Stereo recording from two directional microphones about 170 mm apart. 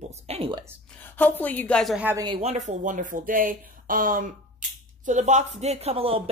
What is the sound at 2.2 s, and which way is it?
Speech, 35° right (ahead or behind).